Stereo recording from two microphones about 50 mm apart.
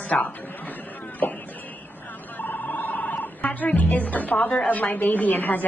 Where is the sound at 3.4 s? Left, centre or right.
Left.